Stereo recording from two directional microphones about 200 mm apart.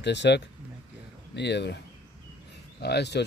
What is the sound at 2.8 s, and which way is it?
Speech, 55° left (ahead or behind).